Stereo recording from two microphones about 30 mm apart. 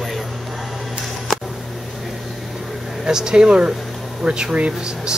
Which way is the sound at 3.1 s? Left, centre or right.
Right.